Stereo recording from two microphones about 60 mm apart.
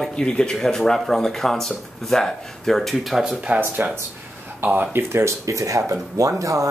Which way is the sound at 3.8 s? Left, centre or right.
Right.